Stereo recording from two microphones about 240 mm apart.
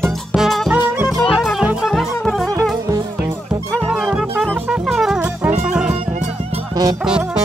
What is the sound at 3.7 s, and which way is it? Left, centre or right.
Music, centre.